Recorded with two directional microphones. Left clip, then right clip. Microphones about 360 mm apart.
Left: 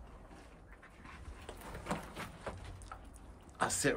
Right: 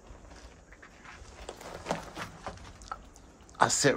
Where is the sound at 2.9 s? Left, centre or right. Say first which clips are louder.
Right 13 dB; centre.